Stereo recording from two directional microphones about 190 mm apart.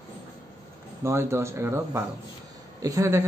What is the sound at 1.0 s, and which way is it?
Speech, 15° right (ahead or behind).